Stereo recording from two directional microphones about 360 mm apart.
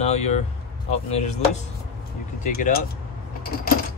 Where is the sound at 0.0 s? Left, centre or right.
Centre.